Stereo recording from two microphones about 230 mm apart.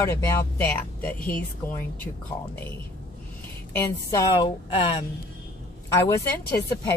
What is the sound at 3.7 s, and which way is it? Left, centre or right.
A woman's voice, centre.